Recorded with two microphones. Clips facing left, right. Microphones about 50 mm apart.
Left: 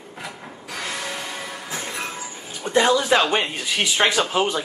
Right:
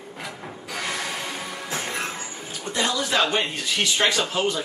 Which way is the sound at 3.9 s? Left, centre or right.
Left.